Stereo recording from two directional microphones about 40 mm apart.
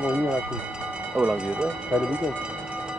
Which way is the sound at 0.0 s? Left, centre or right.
Right.